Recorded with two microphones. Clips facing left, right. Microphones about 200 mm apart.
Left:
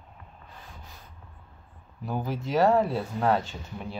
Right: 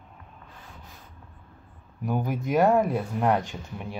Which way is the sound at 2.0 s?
15° right (ahead or behind).